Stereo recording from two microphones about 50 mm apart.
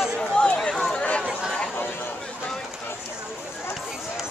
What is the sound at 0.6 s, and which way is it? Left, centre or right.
Run, centre.